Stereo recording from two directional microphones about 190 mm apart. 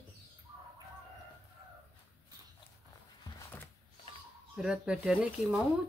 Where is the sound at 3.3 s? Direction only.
10° left (ahead or behind).